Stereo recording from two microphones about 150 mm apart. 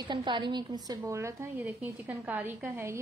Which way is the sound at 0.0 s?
30° right (ahead or behind).